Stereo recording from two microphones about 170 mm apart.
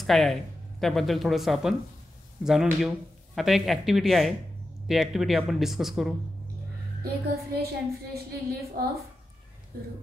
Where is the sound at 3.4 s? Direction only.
Centre (ahead or behind).